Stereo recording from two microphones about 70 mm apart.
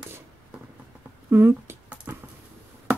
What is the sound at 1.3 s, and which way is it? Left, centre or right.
Speech, right.